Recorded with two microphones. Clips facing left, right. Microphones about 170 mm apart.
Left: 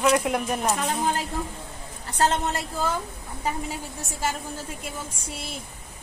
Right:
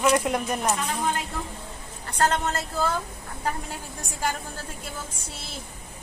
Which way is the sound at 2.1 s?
20° left (ahead or behind).